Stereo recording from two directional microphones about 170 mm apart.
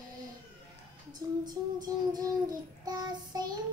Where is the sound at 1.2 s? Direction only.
25° right (ahead or behind).